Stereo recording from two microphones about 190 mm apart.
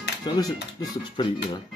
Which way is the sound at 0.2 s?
20° left (ahead or behind).